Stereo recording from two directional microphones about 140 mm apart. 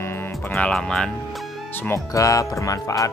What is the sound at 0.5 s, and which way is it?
Speech, 5° left (ahead or behind).